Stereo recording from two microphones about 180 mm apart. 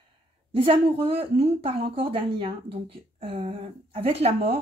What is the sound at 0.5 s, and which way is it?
Speech, 30° right (ahead or behind).